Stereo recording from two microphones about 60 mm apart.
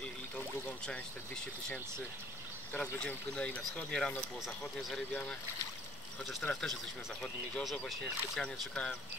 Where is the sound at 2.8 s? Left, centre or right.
Centre.